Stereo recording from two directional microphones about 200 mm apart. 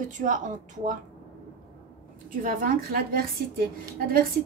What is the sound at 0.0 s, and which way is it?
Speech, 40° right (ahead or behind).